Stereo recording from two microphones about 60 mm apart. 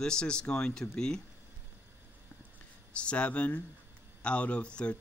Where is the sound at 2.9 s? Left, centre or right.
Centre.